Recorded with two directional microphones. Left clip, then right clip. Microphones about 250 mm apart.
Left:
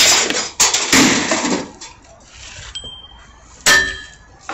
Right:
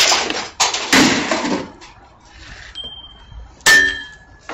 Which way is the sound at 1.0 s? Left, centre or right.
Centre.